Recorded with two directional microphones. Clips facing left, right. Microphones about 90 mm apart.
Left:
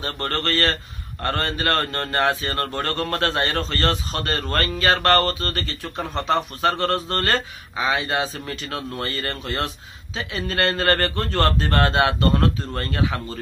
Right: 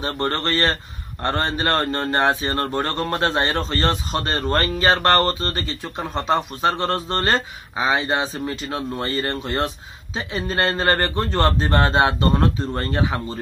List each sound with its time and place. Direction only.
0.0 s speech: 20° right (ahead or behind)